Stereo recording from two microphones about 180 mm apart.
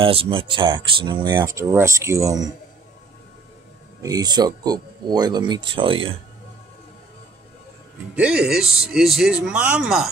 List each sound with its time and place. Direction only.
0.0 s speech: 30° right (ahead or behind)
4.0 s speech: 20° right (ahead or behind)
8.2 s speech: 5° right (ahead or behind)